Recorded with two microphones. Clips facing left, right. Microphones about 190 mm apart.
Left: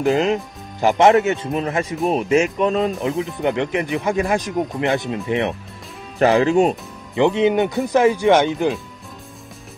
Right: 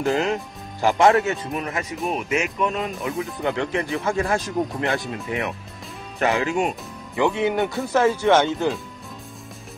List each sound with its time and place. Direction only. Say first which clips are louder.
0.0 s speech: left 4 dB; 20° left (ahead or behind); by 6.8 s 35° left (ahead or behind)
7.2 s speech: left 5 dB; 20° left (ahead or behind)